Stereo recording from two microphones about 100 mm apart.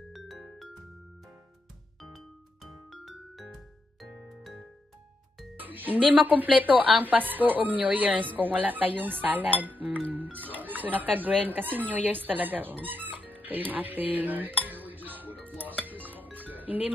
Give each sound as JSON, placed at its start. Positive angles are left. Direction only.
{"t": 2.0, "sound": "music", "side_deg": 0}
{"t": 5.6, "sound": "a woman's voice", "side_deg": -20}
{"t": 12.8, "sound": "music", "side_deg": -15}